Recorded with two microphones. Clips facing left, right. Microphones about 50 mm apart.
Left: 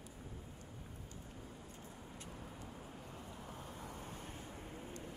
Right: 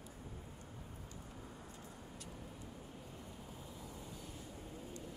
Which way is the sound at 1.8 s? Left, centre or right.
Left.